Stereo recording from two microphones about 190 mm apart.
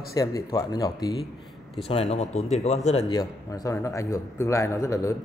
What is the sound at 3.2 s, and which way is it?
A man's voice, 20° left (ahead or behind).